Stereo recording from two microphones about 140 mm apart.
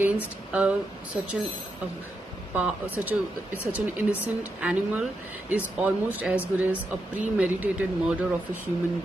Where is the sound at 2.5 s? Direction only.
10° right (ahead or behind).